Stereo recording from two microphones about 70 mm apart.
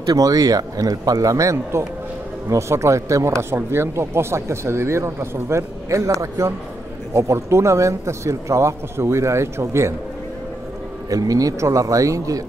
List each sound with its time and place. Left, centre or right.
0.1 s a man's voice: right
3.4 s speech: right
11.1 s a man's voice: right